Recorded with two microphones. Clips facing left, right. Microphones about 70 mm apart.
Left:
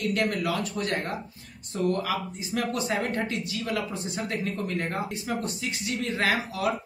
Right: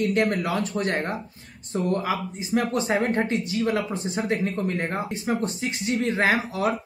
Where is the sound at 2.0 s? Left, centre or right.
Right.